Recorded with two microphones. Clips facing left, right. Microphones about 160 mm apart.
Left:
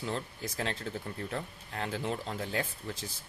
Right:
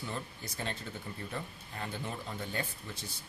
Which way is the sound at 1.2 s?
75° left (ahead or behind).